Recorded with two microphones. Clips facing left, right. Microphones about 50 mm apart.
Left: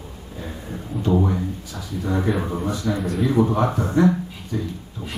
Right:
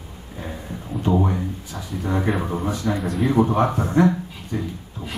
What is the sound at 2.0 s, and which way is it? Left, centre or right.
Speech, right.